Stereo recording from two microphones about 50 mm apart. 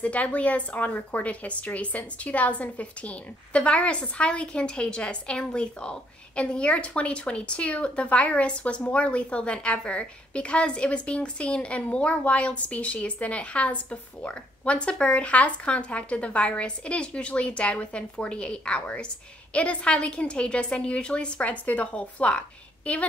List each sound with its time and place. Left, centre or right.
0.0 s a woman's voice: left